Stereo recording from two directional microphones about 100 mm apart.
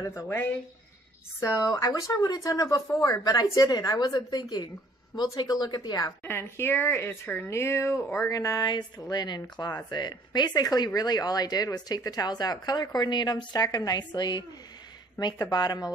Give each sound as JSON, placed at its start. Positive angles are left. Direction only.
{"t": 0.0, "sound": "speech", "side_deg": 30}
{"t": 1.4, "sound": "speech", "side_deg": 35}
{"t": 6.2, "sound": "speech", "side_deg": 20}
{"t": 15.3, "sound": "speech", "side_deg": 35}